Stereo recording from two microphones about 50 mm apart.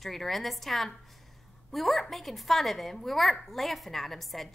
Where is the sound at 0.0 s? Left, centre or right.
Centre.